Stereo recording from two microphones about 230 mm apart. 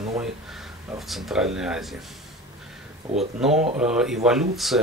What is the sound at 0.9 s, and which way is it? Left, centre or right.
Speech, centre.